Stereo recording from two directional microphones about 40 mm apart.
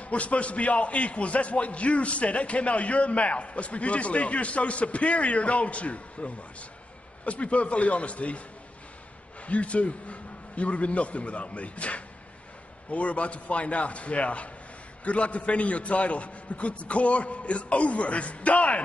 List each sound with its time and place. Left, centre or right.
0.0 s a man's voice: left
9.5 s a man's voice: left